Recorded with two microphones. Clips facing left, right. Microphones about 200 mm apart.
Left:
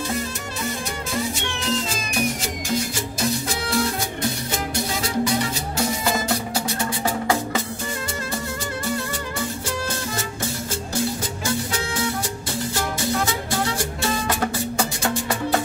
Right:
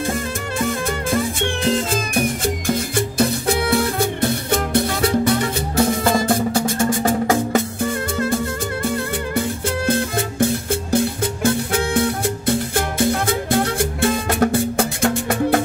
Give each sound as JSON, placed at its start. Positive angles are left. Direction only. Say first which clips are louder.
{"t": 0.6, "sound": "music", "louder": "right 7 dB", "side_deg": -50}
{"t": 9.8, "sound": "music", "louder": "right 8 dB", "side_deg": -55}